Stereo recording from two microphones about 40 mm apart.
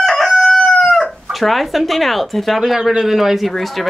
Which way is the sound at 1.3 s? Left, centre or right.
Centre.